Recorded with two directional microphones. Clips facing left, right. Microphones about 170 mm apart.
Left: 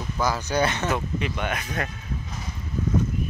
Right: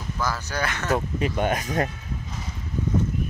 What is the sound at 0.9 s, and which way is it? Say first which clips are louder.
Speech: right 3 dB; 40° right (ahead or behind).